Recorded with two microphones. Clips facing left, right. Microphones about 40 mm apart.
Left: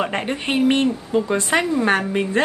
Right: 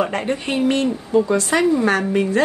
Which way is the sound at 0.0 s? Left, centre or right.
Left.